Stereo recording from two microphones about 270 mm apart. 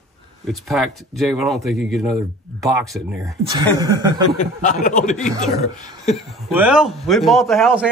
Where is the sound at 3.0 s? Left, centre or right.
Centre.